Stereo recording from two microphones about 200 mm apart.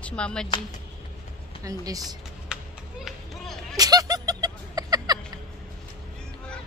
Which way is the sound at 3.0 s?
Centre (ahead or behind).